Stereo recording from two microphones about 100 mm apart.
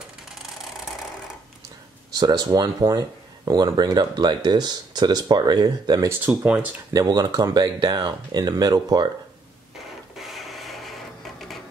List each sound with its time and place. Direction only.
2.1 s speech: 40° right (ahead or behind)
6.4 s speech: 10° right (ahead or behind)
6.9 s speech: 35° right (ahead or behind)
10.1 s printer: centre (ahead or behind)